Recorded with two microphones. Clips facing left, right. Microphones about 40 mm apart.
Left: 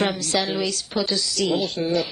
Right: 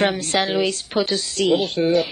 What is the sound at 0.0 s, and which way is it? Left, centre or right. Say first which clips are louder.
A woman's voice: right 3 dB; right.